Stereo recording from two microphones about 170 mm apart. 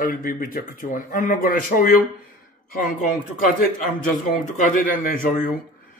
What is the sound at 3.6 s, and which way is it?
A man's voice, 55° left (ahead or behind).